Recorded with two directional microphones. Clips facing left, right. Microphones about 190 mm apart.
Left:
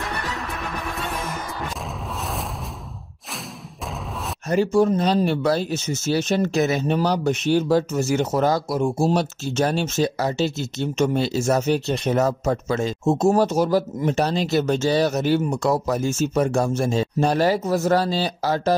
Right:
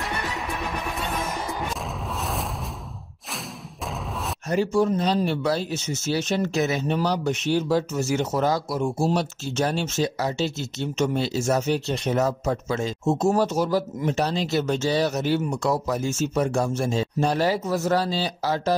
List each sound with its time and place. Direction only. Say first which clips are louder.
4.5 s speech: left 3 dB; 50° left (ahead or behind)